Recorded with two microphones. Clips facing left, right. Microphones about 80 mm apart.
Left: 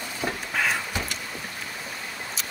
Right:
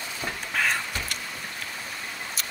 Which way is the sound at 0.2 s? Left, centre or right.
Centre.